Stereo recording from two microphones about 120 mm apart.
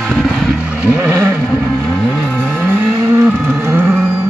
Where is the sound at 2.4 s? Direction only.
15° right (ahead or behind).